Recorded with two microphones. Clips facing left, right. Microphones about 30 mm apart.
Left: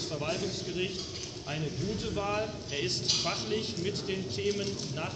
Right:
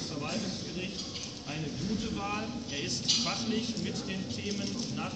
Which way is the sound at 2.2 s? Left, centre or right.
Centre.